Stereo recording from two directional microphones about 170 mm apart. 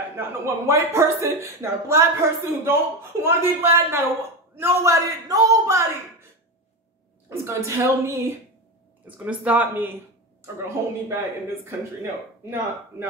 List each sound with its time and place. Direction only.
0.2 s speech: 15° right (ahead or behind)
7.2 s speech: 15° right (ahead or behind)